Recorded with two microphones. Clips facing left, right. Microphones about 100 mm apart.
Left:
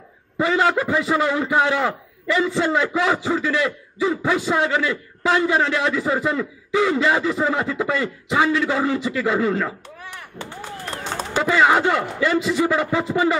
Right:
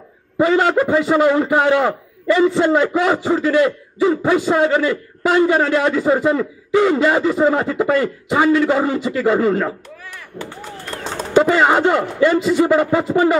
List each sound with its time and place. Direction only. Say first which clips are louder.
0.4 s a man's voice: right 4 dB; 35° right (ahead or behind)
6.1 s a man's voice: right 5 dB; 25° right (ahead or behind)
11.3 s a man's voice: right 4 dB; 35° right (ahead or behind)